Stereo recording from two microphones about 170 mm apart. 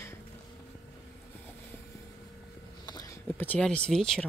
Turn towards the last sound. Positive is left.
turn(degrees=5)  # may be behind; listen again after turning